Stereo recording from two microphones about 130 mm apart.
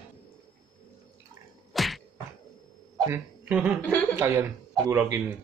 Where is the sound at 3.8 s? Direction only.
10° left (ahead or behind).